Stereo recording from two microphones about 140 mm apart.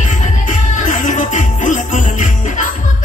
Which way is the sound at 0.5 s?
65° left (ahead or behind).